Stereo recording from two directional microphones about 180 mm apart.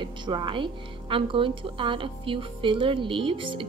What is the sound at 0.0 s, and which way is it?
A woman's voice, 25° right (ahead or behind).